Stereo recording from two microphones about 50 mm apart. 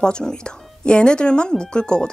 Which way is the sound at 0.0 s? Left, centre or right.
Centre.